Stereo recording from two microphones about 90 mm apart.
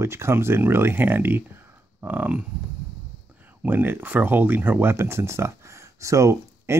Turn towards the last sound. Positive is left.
turn(degrees=-30)  # may be behind; listen again after turning